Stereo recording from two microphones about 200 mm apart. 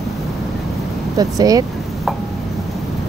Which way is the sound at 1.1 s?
20° right (ahead or behind).